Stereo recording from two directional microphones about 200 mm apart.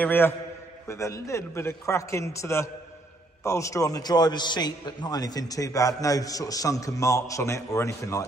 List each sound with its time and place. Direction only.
0.0 s a man's voice: 10° left (ahead or behind)